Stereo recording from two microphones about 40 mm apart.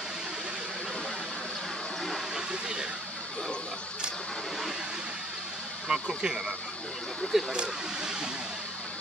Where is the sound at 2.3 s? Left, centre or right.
Centre.